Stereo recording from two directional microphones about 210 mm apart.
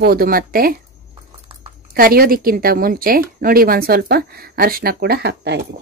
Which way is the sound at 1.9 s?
45° right (ahead or behind).